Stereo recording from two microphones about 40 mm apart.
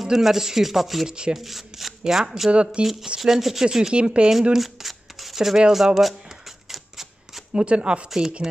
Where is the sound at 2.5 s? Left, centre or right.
Right.